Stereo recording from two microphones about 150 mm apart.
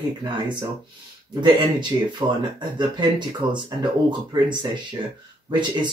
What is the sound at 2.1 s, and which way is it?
Speech, 30° right (ahead or behind).